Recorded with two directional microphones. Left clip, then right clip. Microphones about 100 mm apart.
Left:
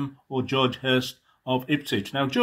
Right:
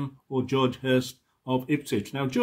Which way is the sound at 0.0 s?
5° left (ahead or behind).